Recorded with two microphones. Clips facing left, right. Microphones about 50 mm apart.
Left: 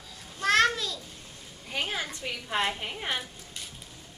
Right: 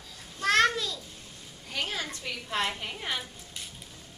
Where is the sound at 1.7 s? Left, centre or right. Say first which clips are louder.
Left 1 dB; centre.